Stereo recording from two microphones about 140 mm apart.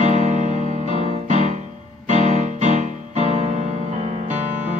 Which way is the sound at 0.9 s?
40° left (ahead or behind).